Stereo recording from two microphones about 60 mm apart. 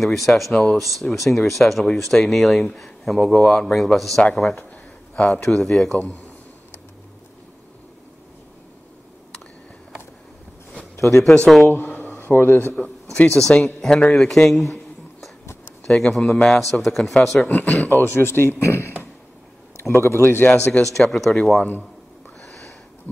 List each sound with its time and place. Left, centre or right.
0.0 s speech: centre
0.5 s speech: centre
0.7 s speech: centre
11.6 s speech: left
13.1 s speech: centre
13.4 s speech: centre
14.3 s a sound: centre
15.9 s speech: centre
17.6 s a man's voice: left
20.5 s speech: left
20.9 s speech: centre